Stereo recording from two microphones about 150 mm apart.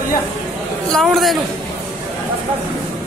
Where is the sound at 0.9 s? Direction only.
Centre (ahead or behind).